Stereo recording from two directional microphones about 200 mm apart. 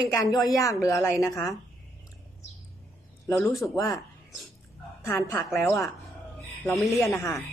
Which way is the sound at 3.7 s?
15° left (ahead or behind).